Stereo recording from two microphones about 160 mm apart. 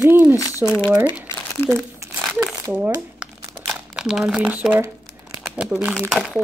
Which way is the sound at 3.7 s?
5° right (ahead or behind).